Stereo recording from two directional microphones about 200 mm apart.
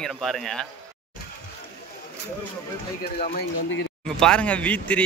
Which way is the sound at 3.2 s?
55° left (ahead or behind).